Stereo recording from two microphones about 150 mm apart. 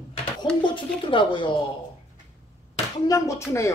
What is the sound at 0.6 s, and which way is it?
Speech, 35° left (ahead or behind).